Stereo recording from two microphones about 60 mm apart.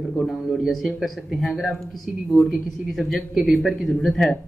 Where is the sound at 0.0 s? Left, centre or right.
Centre.